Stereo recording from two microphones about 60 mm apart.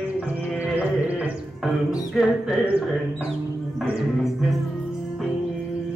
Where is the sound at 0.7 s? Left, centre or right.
Right.